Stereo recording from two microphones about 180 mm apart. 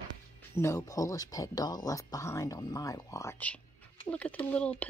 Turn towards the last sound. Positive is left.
turn(degrees=5)  # may be behind; listen again after turning